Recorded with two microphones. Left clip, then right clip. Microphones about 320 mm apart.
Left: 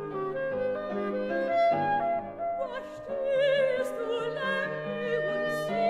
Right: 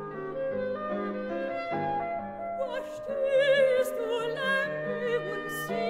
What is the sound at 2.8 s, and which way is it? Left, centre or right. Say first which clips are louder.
Music: right 3 dB; right.